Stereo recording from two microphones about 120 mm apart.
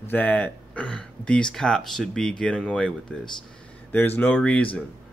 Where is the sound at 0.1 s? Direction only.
15° left (ahead or behind).